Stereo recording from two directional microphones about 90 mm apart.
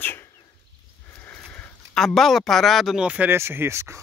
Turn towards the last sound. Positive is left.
turn(degrees=-30)  # may be behind; listen again after turning